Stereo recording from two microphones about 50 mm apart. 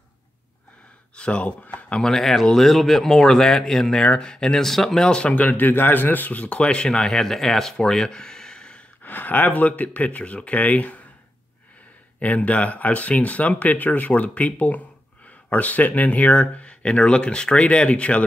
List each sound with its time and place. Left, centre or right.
1.1 s speech: left
2.0 s speech: centre
5.0 s speech: centre
9.0 s speech: left
12.2 s speech: left